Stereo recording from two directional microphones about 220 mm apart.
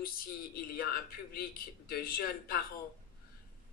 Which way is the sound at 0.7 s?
45° left (ahead or behind).